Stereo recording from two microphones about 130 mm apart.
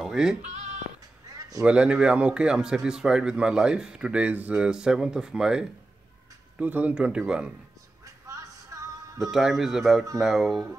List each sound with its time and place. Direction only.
0.0 s bleat: 5° right (ahead or behind)
0.4 s bleat: 60° right (ahead or behind)
1.6 s speech: 10° right (ahead or behind)
8.0 s music: 25° right (ahead or behind)
9.2 s a man's voice: centre (ahead or behind)